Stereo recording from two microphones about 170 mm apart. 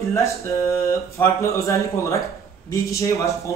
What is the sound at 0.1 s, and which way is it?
Speech, 15° left (ahead or behind).